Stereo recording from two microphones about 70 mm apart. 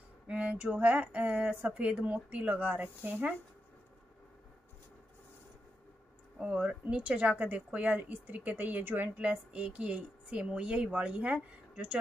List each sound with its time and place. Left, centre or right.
0.3 s a woman's voice: centre
6.4 s a woman's voice: centre